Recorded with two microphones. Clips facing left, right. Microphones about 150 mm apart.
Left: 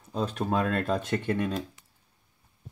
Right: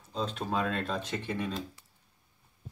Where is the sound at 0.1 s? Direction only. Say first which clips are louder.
Left 4 dB; 55° left (ahead or behind).